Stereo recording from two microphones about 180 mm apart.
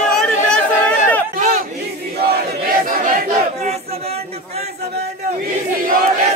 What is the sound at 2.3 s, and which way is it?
Battle cry, 60° right (ahead or behind).